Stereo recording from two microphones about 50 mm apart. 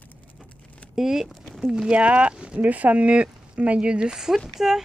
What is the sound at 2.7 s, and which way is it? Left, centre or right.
A woman's voice, right.